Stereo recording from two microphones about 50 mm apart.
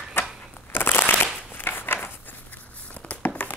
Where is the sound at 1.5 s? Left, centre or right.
Left.